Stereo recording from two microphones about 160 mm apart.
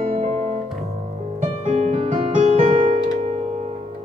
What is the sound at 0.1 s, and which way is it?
Music, 45° right (ahead or behind).